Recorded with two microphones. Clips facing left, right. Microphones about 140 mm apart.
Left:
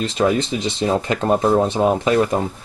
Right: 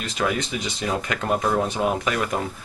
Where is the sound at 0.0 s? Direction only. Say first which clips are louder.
Left 7 dB; 30° left (ahead or behind).